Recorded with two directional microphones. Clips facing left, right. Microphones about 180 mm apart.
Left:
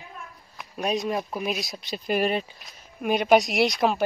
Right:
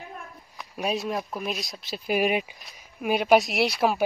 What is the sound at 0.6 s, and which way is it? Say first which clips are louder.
Speech: left 1 dB; centre (ahead or behind).